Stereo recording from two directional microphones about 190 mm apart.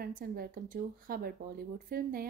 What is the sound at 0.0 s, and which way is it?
A woman's voice, 50° right (ahead or behind).